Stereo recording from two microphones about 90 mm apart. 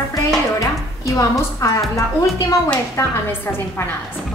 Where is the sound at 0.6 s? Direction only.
35° left (ahead or behind).